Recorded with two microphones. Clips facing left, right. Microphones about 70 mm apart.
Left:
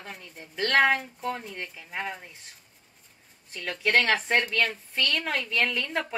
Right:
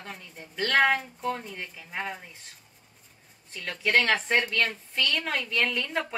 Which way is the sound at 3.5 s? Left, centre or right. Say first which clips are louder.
Left 1 dB; centre.